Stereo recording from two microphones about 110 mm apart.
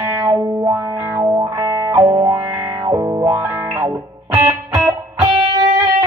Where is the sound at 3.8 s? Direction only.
25° right (ahead or behind).